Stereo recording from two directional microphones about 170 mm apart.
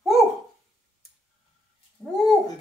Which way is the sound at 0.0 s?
Centre (ahead or behind).